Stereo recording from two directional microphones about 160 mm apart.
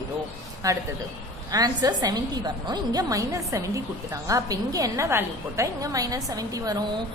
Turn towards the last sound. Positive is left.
turn(degrees=-20)  # may be behind; listen again after turning